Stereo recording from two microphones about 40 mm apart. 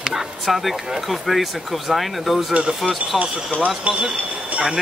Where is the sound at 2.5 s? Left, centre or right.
Right.